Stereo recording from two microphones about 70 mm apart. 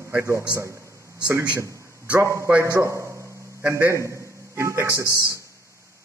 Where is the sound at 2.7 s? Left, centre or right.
Right.